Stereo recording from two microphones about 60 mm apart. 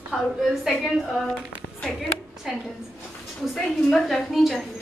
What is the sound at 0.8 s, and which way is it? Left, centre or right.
Speech, centre.